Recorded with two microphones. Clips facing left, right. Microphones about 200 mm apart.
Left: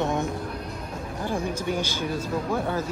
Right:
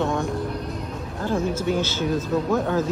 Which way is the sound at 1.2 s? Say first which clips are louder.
Right 5 dB; 15° left (ahead or behind).